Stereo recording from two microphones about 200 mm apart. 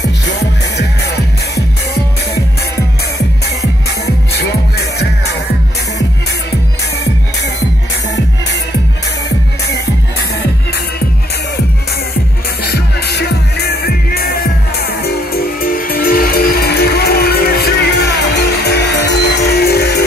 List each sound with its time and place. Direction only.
12.6 s music: 55° left (ahead or behind)